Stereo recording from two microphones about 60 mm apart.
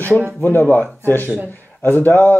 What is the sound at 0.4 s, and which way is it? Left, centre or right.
Speech, left.